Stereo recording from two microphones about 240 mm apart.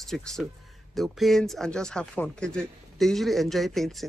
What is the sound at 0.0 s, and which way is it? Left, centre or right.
Speech, centre.